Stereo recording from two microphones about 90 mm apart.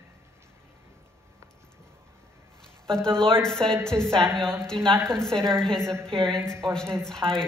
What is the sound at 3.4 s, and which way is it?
A woman's voice, 5° left (ahead or behind).